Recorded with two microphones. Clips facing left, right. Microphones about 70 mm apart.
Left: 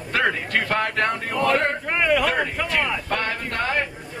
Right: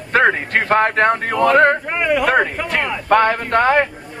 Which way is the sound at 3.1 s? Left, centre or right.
Right.